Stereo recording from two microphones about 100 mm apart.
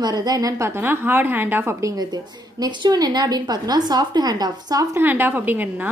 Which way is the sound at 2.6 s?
45° right (ahead or behind).